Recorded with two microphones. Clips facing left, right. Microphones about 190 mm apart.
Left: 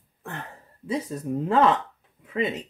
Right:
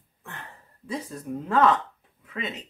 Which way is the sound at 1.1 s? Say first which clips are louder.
Left 4 dB; 30° left (ahead or behind).